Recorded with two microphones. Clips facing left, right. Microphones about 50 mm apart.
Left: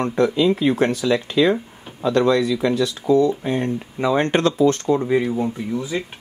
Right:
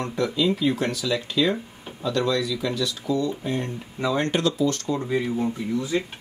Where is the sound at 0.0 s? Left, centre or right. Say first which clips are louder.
Left 6 dB; left; by 6.0 s centre.